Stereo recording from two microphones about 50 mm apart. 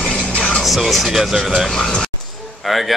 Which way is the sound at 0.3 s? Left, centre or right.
Left.